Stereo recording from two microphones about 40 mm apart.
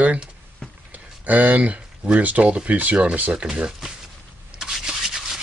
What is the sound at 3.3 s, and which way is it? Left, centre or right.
Speech, right.